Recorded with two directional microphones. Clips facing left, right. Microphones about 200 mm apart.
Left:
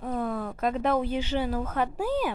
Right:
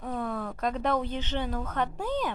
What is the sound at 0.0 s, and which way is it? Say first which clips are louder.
Speech: left 3 dB; 5° left (ahead or behind).